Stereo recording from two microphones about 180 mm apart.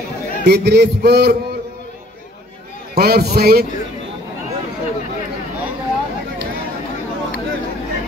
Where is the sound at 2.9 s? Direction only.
60° right (ahead or behind).